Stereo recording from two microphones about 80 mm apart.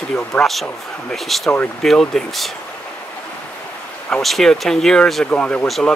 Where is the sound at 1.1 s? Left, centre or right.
Centre.